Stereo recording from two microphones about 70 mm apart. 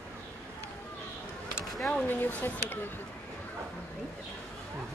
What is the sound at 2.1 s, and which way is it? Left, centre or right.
Speech, left.